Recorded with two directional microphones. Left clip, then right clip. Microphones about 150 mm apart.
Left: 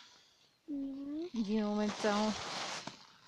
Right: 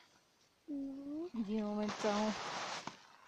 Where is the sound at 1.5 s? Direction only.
20° left (ahead or behind).